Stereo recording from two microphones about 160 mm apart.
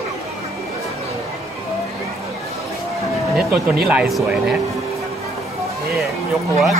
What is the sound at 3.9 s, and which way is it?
Speech, 5° right (ahead or behind).